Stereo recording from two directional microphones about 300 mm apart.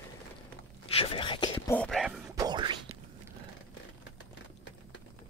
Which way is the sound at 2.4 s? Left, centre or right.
Centre.